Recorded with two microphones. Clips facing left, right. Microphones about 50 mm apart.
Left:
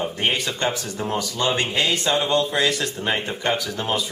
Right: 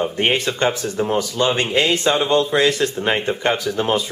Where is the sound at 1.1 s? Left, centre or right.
Right.